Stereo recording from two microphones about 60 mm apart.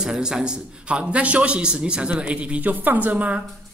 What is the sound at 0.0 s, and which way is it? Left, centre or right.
Speech, centre.